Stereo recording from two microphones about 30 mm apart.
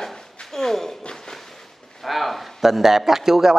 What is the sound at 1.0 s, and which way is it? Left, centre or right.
Speech, left.